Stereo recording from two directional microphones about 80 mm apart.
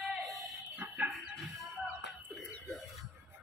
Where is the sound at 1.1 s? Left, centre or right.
Centre.